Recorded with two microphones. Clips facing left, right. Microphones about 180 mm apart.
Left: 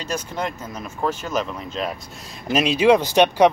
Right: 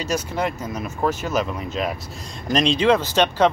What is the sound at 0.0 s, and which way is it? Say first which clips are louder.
Speech: right 3 dB; 10° right (ahead or behind).